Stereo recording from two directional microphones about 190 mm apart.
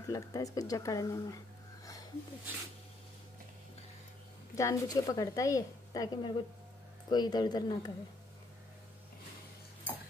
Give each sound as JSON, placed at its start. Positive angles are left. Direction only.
{"t": 0.0, "sound": "a woman's voice", "side_deg": 20}
{"t": 4.6, "sound": "a woman's voice", "side_deg": 15}